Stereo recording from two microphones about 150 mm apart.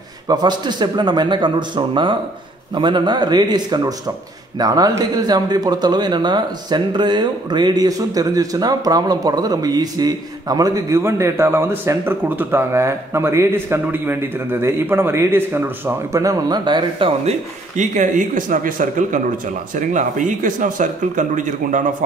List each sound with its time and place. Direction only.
0.3 s a man's voice: 30° right (ahead or behind)
17.2 s speech: 50° right (ahead or behind)